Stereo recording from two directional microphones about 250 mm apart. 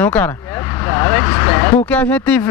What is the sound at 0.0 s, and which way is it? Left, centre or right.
Speech, centre.